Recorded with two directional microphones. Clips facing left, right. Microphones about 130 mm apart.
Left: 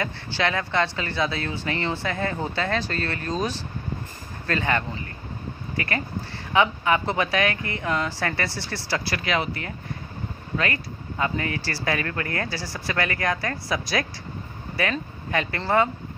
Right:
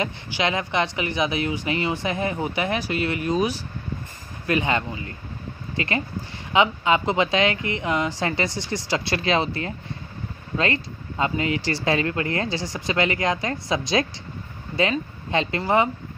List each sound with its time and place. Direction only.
0.0 s speech: 15° right (ahead or behind)